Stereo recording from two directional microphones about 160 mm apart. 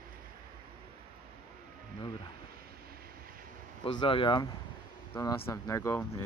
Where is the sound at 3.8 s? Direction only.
35° left (ahead or behind).